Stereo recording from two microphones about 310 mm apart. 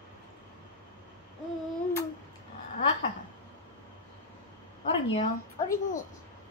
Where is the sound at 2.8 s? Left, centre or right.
Centre.